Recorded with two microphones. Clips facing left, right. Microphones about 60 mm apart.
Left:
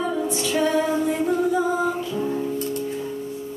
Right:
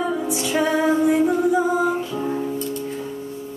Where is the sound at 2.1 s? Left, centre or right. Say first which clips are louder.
Even; right.